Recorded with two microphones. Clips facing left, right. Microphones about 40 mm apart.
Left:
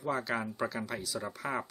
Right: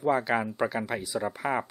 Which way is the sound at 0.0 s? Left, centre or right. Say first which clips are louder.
Right 7 dB; right.